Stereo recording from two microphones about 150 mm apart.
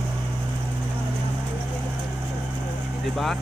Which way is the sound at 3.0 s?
Centre (ahead or behind).